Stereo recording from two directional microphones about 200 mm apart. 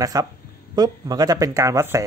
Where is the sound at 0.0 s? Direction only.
15° right (ahead or behind).